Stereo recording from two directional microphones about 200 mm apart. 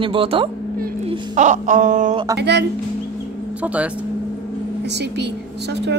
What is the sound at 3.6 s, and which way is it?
Speech, 5° right (ahead or behind).